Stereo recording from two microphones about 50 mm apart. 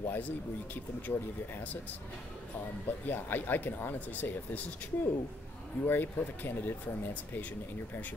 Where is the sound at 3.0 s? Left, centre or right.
Left.